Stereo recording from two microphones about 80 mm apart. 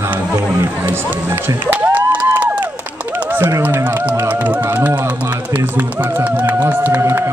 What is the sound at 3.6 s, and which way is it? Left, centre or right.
Speech, right.